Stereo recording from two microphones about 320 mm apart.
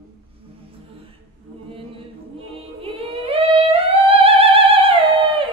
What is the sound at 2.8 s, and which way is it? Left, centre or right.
Music, centre.